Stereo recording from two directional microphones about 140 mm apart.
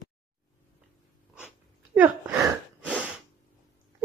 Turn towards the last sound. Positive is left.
turn(degrees=-5)  # may be behind; listen again after turning